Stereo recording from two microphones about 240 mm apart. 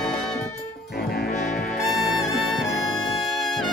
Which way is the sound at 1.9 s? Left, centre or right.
Centre.